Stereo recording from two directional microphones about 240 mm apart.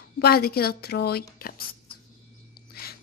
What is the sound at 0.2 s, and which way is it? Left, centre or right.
Speech, left.